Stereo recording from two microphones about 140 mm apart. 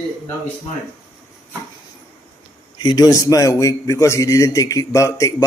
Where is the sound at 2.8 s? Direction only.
30° left (ahead or behind).